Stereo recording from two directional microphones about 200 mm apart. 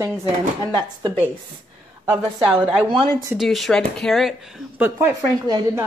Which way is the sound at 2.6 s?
Centre (ahead or behind).